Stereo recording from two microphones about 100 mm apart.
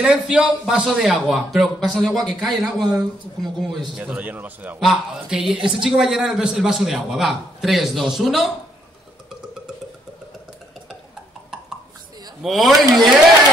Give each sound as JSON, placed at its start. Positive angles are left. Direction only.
{"t": 0.0, "sound": "a man's voice", "side_deg": -10}
{"t": 4.0, "sound": "a man's voice", "side_deg": -15}
{"t": 4.7, "sound": "a man's voice", "side_deg": -5}
{"t": 12.4, "sound": "a man's voice", "side_deg": 0}